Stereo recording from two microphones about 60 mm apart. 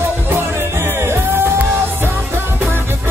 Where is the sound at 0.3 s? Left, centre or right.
Right.